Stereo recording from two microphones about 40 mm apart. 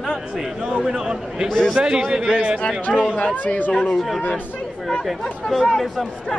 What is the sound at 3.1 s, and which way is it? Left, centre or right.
Speech, left.